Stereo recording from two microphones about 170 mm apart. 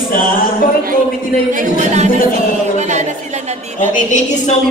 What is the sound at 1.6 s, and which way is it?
Speech, 45° right (ahead or behind).